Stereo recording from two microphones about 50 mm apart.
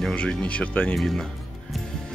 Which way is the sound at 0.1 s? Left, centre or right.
Left.